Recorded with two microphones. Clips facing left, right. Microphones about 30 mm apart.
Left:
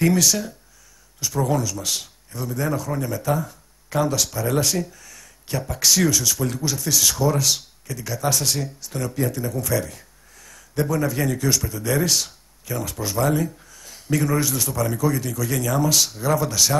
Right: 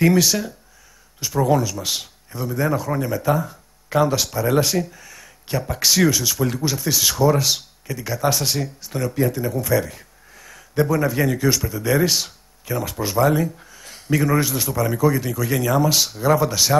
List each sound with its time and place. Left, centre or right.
0.0 s speech: centre